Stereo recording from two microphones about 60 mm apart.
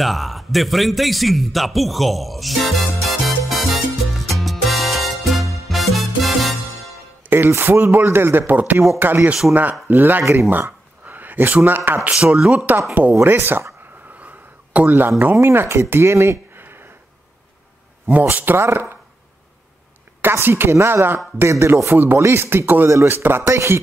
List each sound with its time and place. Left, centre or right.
0.0 s a sound: centre
7.2 s speech: right
12.1 s speech: centre
13.1 s speech: right
14.2 s a sound: right
15.3 s speech: right
18.3 s speech: right
20.2 s a woman's voice: right
21.9 s speech: right
22.2 s speech: right
22.8 s speech: right
23.1 s speech: right
23.4 s a man's voice: right